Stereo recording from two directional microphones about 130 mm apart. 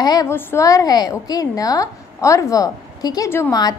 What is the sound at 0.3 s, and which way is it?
A woman's voice, 20° left (ahead or behind).